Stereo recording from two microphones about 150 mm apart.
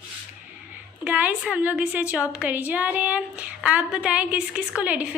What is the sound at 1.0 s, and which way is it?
A woman's voice, 10° right (ahead or behind).